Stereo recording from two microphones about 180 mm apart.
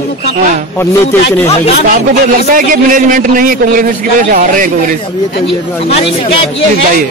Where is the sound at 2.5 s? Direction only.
50° right (ahead or behind).